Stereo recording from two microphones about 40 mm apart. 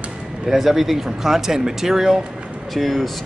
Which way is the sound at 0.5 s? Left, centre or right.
Centre.